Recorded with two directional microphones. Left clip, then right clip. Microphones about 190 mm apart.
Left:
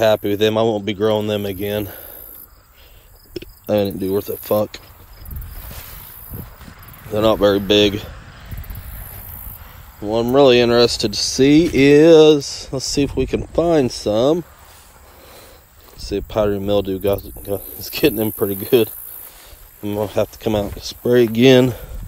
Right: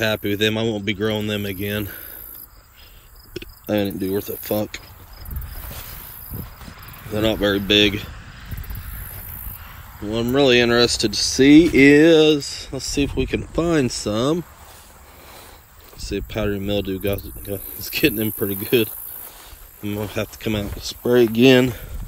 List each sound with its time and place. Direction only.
0.0 s a man's voice: 10° left (ahead or behind)
3.4 s a sound: 5° left (ahead or behind)
3.7 s a man's voice: 25° left (ahead or behind)
7.4 s a man's voice: 15° left (ahead or behind)
8.3 s snake: 55° left (ahead or behind)
10.0 s a man's voice: 10° left (ahead or behind)
10.4 s speech: 20° left (ahead or behind)
13.5 s a man's voice: 10° left (ahead or behind)
16.0 s a man's voice: 10° left (ahead or behind)
20.1 s a man's voice: 15° left (ahead or behind)
21.1 s speech: 45° left (ahead or behind)